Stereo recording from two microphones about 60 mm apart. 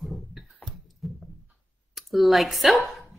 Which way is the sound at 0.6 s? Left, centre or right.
Left.